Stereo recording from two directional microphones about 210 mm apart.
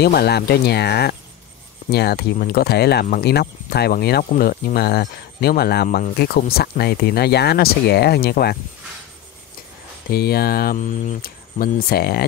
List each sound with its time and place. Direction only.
0.0 s speech: 50° left (ahead or behind)
10.0 s speech: 45° left (ahead or behind)